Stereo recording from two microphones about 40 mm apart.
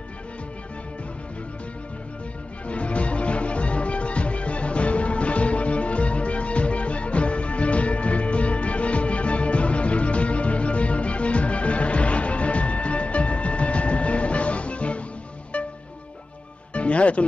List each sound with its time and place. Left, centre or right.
2.7 s music: left
16.7 s music: left